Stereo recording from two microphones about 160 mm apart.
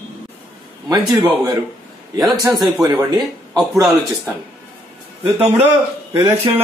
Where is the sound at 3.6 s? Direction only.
Centre (ahead or behind).